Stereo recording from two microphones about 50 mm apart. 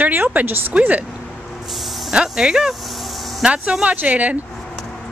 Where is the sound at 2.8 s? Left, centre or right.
Centre.